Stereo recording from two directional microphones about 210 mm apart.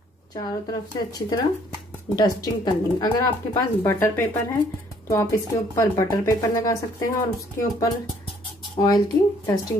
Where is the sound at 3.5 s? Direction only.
10° left (ahead or behind).